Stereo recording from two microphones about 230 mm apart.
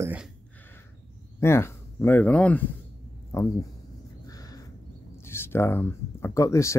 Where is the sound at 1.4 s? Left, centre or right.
Centre.